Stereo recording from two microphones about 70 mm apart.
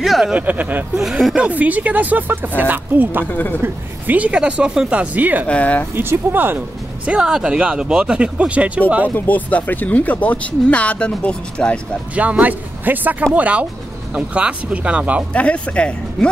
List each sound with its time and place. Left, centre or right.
0.0 s speech: centre
0.3 s speech: right
0.9 s speech: centre
1.5 s speech: right
3.3 s speech: left
3.6 s speech: right
5.5 s speech: left
5.9 s speech: right
7.1 s speech: centre
9.1 s speech: left
12.2 s speech: right
15.3 s speech: centre